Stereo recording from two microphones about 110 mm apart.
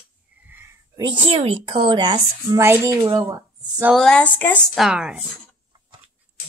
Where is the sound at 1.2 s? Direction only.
55° right (ahead or behind).